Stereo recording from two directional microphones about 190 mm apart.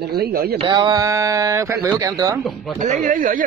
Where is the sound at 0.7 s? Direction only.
20° right (ahead or behind).